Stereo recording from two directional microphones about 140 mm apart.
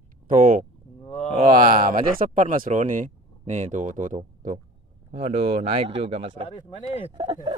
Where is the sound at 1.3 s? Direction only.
75° right (ahead or behind); by 2.1 s 90° right.